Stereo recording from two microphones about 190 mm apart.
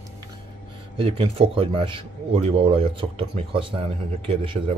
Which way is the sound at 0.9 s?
30° right (ahead or behind).